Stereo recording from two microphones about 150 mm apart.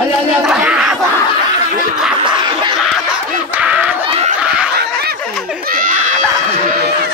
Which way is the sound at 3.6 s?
10° right (ahead or behind).